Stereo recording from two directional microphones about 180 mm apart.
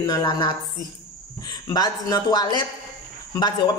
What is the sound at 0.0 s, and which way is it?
Speech, 20° left (ahead or behind).